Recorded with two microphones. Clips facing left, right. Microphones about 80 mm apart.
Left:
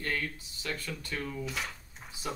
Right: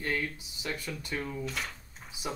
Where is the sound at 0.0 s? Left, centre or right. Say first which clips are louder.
Right 2 dB; centre.